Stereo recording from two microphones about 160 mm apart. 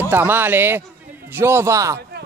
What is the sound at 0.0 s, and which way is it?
Speech, 15° right (ahead or behind).